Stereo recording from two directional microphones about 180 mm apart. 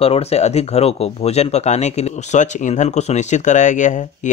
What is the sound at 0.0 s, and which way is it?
Speech, 35° left (ahead or behind).